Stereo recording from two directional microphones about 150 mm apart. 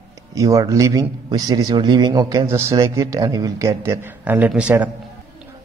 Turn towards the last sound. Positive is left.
turn(degrees=-10)  # may be behind; listen again after turning